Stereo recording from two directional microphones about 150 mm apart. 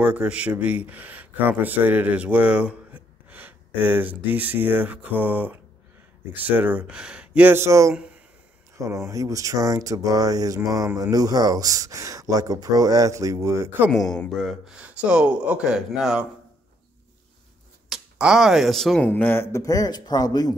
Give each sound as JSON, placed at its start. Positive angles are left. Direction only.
{"t": 0.0, "sound": "speech", "side_deg": -10}
{"t": 13.9, "sound": "speech", "side_deg": 5}
{"t": 17.8, "sound": "speech", "side_deg": -5}
{"t": 19.0, "sound": "speech", "side_deg": 10}